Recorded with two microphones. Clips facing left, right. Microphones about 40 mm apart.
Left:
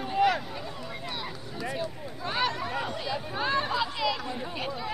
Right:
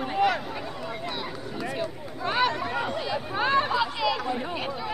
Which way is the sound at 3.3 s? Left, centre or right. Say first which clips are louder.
Right 5 dB; right.